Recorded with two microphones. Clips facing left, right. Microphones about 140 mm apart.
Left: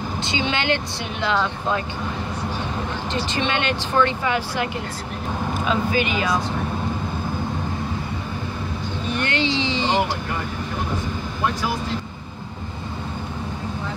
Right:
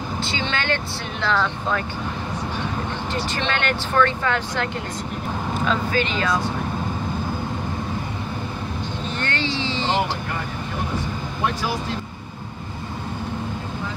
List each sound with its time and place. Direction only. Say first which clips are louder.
0.2 s speech: left 3 dB; 15° left (ahead or behind)
3.1 s speech: left 2 dB; 20° left (ahead or behind)
5.7 s speech: left 2 dB; 10° left (ahead or behind)
9.1 s speech: left 5 dB; 15° left (ahead or behind)